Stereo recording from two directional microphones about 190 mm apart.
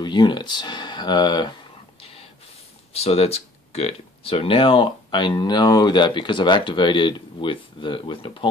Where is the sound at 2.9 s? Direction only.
30° left (ahead or behind).